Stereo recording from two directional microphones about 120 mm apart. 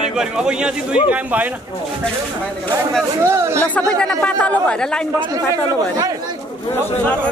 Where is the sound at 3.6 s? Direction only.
10° left (ahead or behind).